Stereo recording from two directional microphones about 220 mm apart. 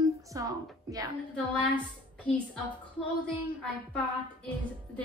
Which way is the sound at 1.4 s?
5° left (ahead or behind).